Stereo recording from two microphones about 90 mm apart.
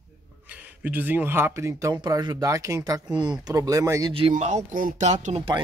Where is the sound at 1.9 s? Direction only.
45° right (ahead or behind).